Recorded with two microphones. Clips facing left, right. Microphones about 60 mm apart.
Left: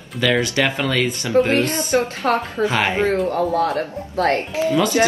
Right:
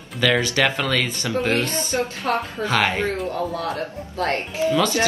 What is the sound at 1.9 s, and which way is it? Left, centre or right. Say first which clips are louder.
Speech: left 6 dB; left.